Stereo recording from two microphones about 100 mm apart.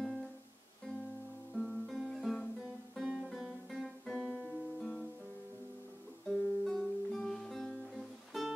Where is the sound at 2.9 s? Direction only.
5° right (ahead or behind).